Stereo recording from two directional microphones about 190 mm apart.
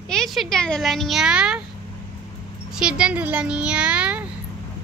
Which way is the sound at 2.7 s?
5° right (ahead or behind).